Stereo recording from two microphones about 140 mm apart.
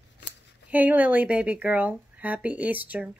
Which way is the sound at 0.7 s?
10° right (ahead or behind).